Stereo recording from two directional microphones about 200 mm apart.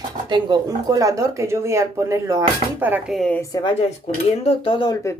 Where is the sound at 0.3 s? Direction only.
20° right (ahead or behind).